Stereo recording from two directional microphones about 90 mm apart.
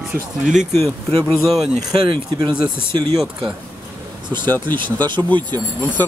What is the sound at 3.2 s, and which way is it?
Speech, 10° right (ahead or behind).